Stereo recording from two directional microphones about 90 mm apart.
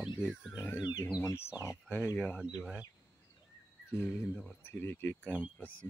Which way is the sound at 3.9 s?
25° left (ahead or behind).